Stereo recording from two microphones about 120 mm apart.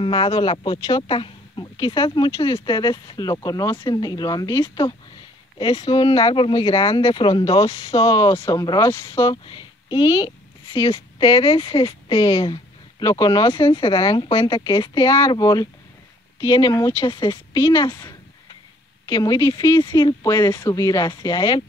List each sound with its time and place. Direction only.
0.0 s speech: 40° left (ahead or behind)
2.3 s speech: 25° left (ahead or behind)
2.6 s speech: 40° left (ahead or behind)
5.6 s speech: 40° left (ahead or behind)
7.6 s speech: 30° left (ahead or behind)
9.3 s speech: 40° left (ahead or behind)
11.6 s speech: 50° left (ahead or behind)
12.2 s speech: 25° left (ahead or behind)
19.0 s speech: 30° left (ahead or behind)
19.7 s speech: 40° left (ahead or behind)